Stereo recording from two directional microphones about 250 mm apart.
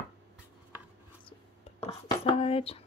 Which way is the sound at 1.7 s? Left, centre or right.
Left.